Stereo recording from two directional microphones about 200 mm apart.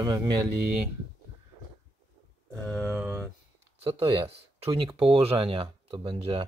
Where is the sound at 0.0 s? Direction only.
20° right (ahead or behind).